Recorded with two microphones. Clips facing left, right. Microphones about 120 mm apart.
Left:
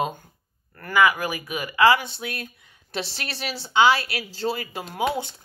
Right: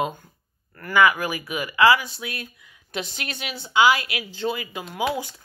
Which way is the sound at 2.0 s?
30° left (ahead or behind).